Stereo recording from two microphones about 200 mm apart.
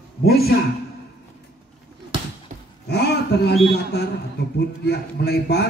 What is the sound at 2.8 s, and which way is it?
A man's voice, 55° left (ahead or behind).